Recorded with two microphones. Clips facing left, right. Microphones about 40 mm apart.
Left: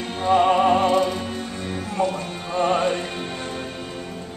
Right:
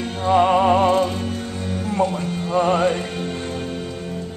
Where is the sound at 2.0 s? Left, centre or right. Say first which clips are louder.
Right 2 dB; centre.